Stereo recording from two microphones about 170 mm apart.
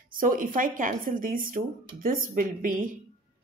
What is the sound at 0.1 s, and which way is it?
A woman's voice, 55° right (ahead or behind).